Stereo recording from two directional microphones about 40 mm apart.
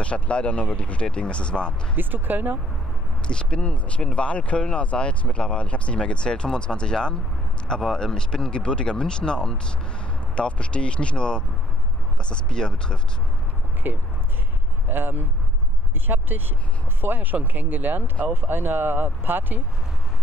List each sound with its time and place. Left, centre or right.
0.0 s speech: left
2.0 s speech: right
3.3 s speech: left
13.9 s speech: right
18.3 s speech: right